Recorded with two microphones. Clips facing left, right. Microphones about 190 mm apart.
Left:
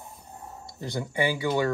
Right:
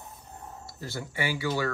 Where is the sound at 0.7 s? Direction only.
15° left (ahead or behind).